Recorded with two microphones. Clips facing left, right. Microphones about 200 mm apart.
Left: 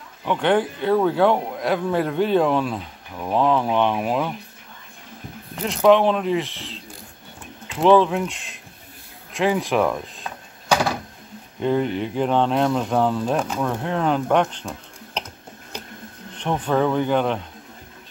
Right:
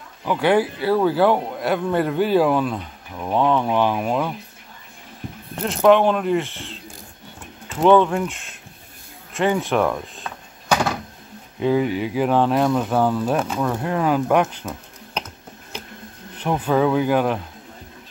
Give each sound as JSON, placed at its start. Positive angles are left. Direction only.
{"t": 0.2, "sound": "speech", "side_deg": -5}
{"t": 5.6, "sound": "speech", "side_deg": 0}
{"t": 7.8, "sound": "speech", "side_deg": 0}
{"t": 9.3, "sound": "door", "side_deg": 0}
{"t": 11.6, "sound": "speech", "side_deg": -5}
{"t": 16.3, "sound": "speech", "side_deg": -5}